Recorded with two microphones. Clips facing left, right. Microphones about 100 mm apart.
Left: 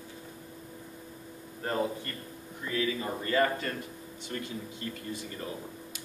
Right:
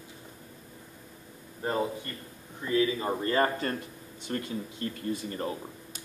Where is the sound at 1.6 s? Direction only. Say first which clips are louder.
Right 1 dB; 15° right (ahead or behind).